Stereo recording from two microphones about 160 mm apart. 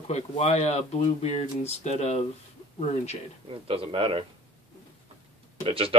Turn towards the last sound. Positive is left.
turn(degrees=-35)  # may be behind; listen again after turning